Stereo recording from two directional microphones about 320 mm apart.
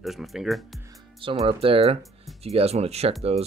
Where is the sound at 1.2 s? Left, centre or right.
Centre.